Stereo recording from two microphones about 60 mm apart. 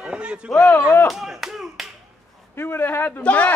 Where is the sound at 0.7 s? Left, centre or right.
Left.